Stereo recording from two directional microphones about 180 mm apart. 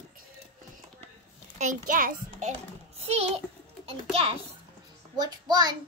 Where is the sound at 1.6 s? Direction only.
45° right (ahead or behind).